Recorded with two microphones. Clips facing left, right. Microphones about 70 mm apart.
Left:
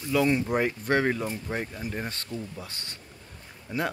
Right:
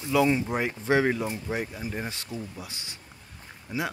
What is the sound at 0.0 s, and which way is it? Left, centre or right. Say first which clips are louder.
Speech: right 1 dB; centre.